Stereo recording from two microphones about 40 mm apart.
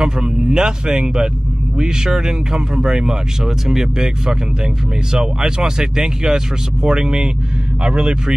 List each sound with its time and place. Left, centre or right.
0.0 s speech: centre